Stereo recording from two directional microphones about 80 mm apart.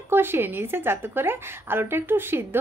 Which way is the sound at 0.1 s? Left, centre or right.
Right.